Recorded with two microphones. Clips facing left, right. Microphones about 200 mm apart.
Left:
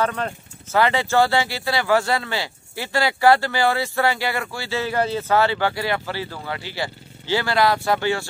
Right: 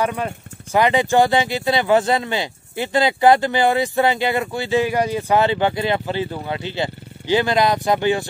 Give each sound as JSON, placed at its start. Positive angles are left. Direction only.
{"t": 0.0, "sound": "speech", "side_deg": -10}